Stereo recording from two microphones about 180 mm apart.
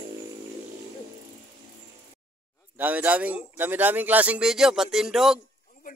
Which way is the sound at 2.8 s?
10° right (ahead or behind).